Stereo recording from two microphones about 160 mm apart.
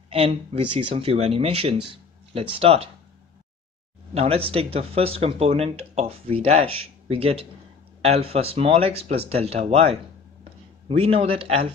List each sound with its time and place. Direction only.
0.1 s speech: 40° right (ahead or behind)
4.1 s speech: 40° right (ahead or behind)